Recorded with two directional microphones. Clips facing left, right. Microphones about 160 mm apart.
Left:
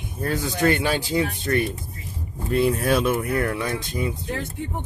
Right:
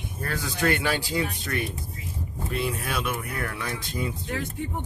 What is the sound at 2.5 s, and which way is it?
Speech, 40° left (ahead or behind).